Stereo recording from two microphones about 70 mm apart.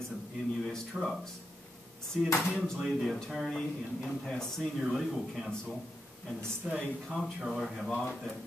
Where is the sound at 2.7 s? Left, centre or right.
Centre.